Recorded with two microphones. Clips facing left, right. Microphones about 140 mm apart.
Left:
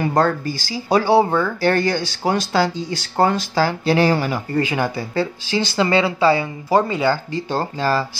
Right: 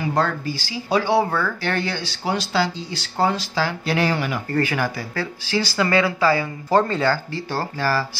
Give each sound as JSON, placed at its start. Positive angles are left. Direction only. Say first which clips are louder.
{"t": 0.0, "sound": "speech", "louder": "left 4 dB", "side_deg": 45}
{"t": 4.5, "sound": "speech", "louder": "even", "side_deg": 20}
{"t": 6.7, "sound": "speech", "louder": "left 1 dB", "side_deg": 10}